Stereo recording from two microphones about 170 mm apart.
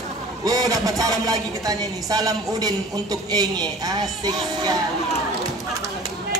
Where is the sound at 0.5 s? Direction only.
20° right (ahead or behind).